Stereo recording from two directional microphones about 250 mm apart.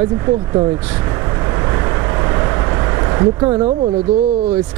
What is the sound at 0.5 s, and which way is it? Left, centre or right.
Speech, centre.